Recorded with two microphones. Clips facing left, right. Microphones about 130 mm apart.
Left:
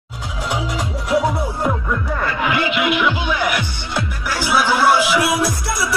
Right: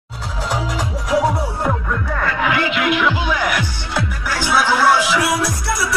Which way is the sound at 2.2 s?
5° left (ahead or behind).